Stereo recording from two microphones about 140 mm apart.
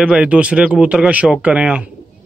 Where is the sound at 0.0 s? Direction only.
5° right (ahead or behind).